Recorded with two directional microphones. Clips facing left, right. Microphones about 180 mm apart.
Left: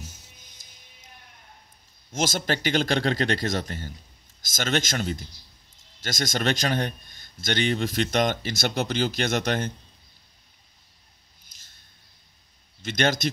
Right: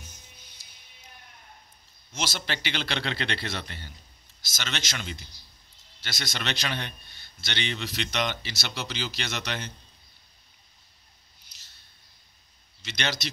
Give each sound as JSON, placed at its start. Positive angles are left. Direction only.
{"t": 0.4, "sound": "music", "side_deg": 45}
{"t": 2.1, "sound": "a man's voice", "side_deg": 45}
{"t": 12.8, "sound": "a man's voice", "side_deg": 50}